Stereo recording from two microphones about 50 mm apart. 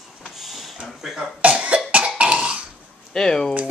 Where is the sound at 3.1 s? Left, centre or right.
Centre.